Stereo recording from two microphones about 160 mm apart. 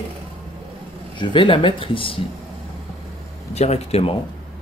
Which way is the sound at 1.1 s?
30° left (ahead or behind).